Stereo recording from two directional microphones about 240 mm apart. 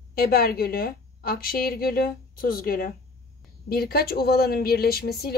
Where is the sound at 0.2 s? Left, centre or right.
Left.